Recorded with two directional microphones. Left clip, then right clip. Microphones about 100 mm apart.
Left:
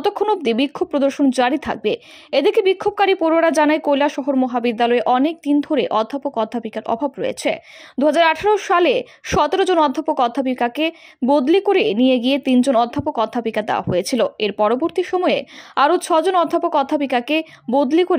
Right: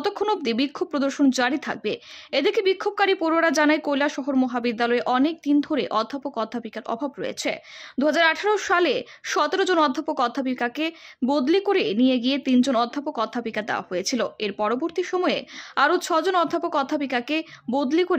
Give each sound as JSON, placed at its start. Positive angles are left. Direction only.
{"t": 0.3, "sound": "a woman's voice", "side_deg": 30}